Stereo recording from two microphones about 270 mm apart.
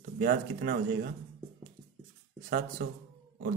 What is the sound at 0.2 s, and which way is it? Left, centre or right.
Speech, right.